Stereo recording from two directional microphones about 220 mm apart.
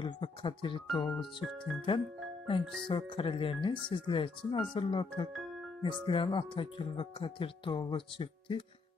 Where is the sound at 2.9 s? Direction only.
25° left (ahead or behind).